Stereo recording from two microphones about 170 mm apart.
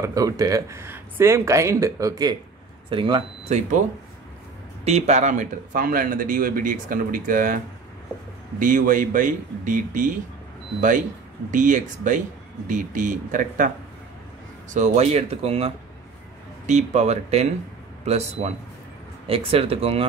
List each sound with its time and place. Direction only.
0.0 s speech: 20° right (ahead or behind)
4.8 s a man's voice: 40° right (ahead or behind)
11.5 s a man's voice: 50° right (ahead or behind)
14.7 s speech: 40° right (ahead or behind)